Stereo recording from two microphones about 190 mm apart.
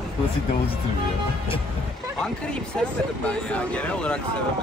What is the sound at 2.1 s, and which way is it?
Speech, 5° left (ahead or behind).